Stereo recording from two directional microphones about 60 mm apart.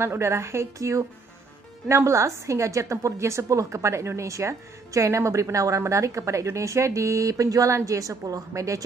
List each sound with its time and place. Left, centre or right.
0.0 s a woman's voice: right
7.7 s a woman's voice: right